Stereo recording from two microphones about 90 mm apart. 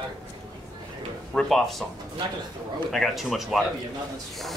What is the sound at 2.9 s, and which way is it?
Speech, centre (ahead or behind).